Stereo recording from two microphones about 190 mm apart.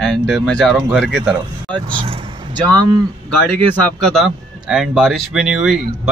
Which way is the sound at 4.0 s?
Centre (ahead or behind).